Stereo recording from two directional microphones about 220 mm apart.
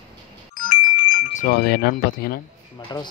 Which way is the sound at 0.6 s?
40° left (ahead or behind).